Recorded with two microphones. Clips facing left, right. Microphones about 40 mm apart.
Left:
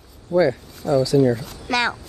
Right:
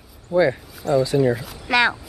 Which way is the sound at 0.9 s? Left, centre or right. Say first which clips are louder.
Left 1 dB; right.